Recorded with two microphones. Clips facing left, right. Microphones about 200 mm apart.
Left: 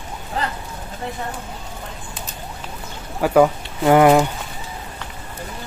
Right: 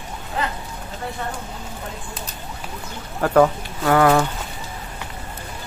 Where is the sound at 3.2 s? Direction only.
10° left (ahead or behind).